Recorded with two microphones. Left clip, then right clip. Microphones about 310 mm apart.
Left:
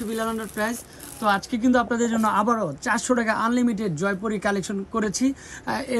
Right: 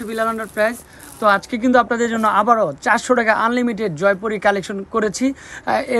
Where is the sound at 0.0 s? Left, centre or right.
Centre.